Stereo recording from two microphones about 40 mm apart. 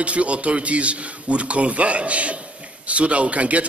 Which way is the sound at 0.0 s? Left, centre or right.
Right.